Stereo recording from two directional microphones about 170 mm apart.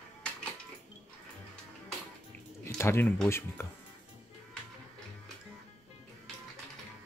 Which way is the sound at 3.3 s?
15° left (ahead or behind).